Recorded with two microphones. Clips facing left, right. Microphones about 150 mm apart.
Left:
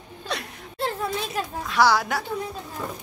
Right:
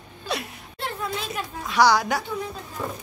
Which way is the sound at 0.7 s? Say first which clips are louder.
Left 3 dB; 35° left (ahead or behind).